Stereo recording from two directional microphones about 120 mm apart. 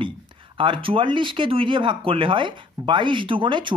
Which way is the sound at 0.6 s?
45° right (ahead or behind).